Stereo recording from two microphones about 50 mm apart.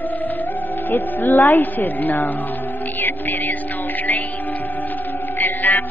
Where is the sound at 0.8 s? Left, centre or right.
Left.